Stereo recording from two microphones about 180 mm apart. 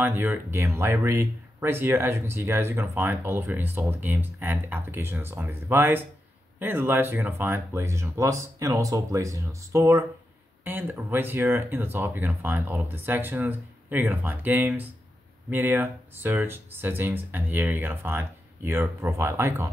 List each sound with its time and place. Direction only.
0.0 s speech: 10° right (ahead or behind)